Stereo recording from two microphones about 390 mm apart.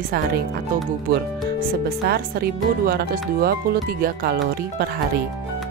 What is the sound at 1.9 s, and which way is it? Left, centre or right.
Speech, right.